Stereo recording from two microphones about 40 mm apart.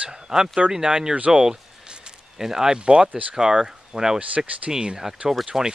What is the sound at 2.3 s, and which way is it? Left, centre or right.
Speech, centre.